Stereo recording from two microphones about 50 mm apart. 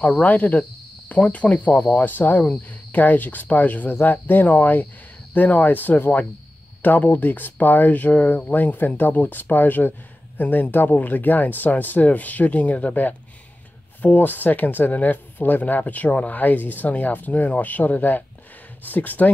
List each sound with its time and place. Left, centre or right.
0.2 s speech: left
2.0 s speech: left